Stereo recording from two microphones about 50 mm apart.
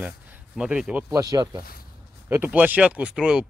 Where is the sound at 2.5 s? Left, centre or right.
Right.